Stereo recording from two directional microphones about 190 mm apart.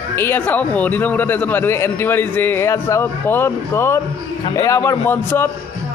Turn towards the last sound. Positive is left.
turn(degrees=10)  # may be behind; listen again after turning